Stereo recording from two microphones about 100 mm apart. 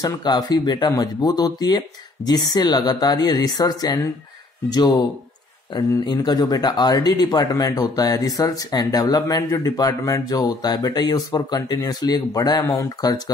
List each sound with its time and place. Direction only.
0.0 s speech: 45° left (ahead or behind)